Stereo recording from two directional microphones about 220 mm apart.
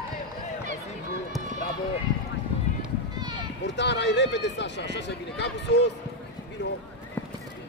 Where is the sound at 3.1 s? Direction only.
20° right (ahead or behind).